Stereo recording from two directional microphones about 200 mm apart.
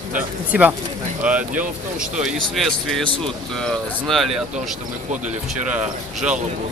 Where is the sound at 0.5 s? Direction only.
10° right (ahead or behind).